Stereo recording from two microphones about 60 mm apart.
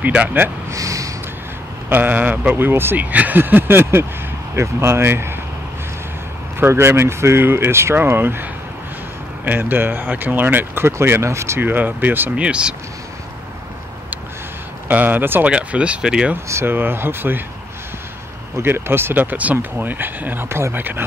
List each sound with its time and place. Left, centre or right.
0.0 s speech: right
0.7 s speech: right
1.9 s speech: right
6.6 s speech: right
11.6 s speech: right
12.4 s speech: centre
14.9 s speech: right
15.4 s speech: centre
16.4 s speech: right
16.7 s speech: right
18.6 s speech: right
19.3 s speech: right
20.4 s speech: right